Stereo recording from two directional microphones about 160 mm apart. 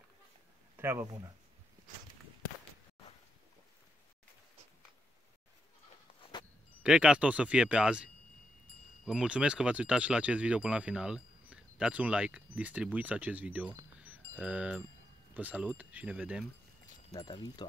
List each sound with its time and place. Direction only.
0.7 s speech: 15° right (ahead or behind)
6.8 s speech: 5° right (ahead or behind)
14.0 s wind chime: 5° right (ahead or behind)
15.3 s speech: 10° right (ahead or behind)
17.1 s speech: 25° left (ahead or behind)